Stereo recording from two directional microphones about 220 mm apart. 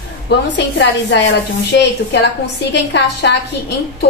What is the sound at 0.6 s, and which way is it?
A woman's voice, 50° left (ahead or behind).